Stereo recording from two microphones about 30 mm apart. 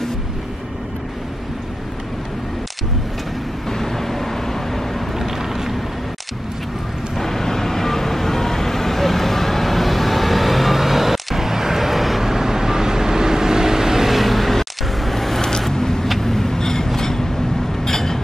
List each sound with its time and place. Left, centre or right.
3.6 s vehicle: centre
5.2 s vehicle: centre
7.2 s vehicle: centre
12.2 s vehicle: centre
14.1 s vehicle: centre
15.7 s vehicle: centre
17.8 s a sound: centre